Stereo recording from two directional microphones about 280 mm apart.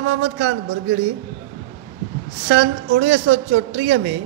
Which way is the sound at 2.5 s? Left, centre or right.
Right.